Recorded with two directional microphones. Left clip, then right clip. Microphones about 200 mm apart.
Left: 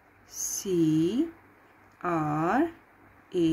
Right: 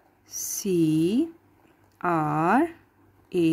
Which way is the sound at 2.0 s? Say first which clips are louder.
Right 4 dB; 45° right (ahead or behind).